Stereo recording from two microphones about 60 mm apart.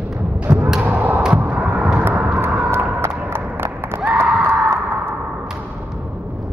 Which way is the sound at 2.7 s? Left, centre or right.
Right.